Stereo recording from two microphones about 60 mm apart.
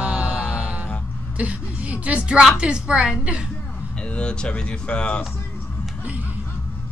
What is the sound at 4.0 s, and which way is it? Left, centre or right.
Speech, centre.